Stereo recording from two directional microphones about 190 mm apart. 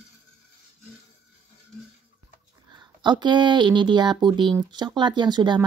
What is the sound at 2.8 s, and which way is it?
Speech, 25° right (ahead or behind).